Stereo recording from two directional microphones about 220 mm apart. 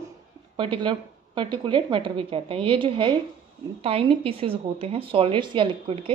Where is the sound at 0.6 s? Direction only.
20° right (ahead or behind).